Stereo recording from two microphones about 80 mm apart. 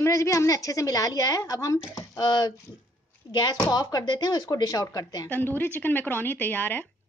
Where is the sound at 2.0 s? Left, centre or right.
Left.